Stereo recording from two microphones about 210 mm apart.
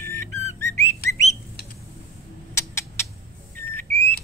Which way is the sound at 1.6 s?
50° left (ahead or behind).